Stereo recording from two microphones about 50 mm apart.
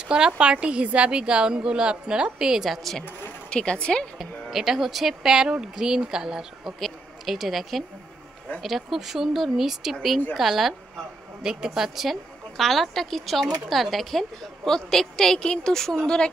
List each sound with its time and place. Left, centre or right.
0.4 s a woman's voice: right
2.7 s speech: centre
3.4 s speech: centre
4.2 s a woman's voice: centre